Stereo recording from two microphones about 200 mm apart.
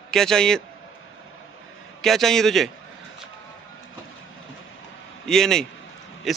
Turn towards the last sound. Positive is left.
turn(degrees=0)  # may be behind; listen again after turning